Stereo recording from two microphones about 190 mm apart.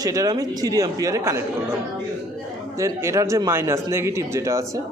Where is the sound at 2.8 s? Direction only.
15° right (ahead or behind).